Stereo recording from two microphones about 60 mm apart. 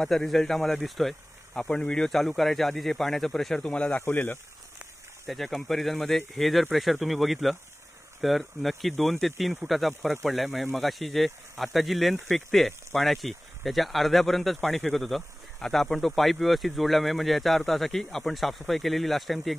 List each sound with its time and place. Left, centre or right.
0.1 s speech: centre
1.6 s speech: centre
3.5 s speech: centre
4.0 s speech: left
5.2 s speech: centre